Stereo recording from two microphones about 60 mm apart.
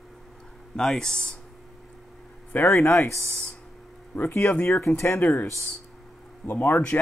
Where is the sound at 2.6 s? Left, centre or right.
Left.